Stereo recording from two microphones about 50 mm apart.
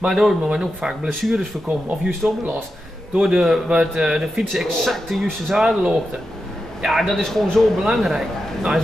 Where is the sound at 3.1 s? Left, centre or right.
Centre.